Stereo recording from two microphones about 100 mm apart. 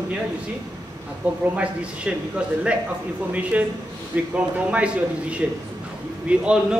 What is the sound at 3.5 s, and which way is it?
A man's voice, 15° right (ahead or behind).